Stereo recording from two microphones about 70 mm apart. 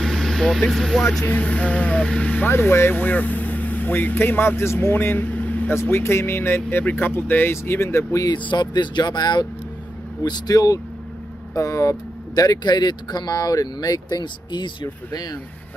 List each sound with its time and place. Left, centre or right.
0.0 s speech: centre
1.2 s speech: left
2.4 s speech: left
5.8 s speech: left
8.3 s speech: left